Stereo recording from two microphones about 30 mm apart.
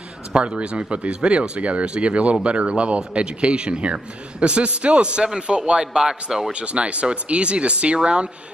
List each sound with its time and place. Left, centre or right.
0.6 s a man's voice: right
5.1 s a man's voice: right
6.5 s a man's voice: right